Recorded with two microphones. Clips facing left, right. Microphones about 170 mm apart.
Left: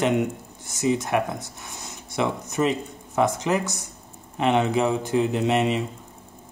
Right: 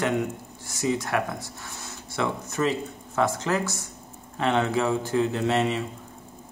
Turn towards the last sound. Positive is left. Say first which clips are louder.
# left 2 dB
turn(degrees=15)  # may be behind; listen again after turning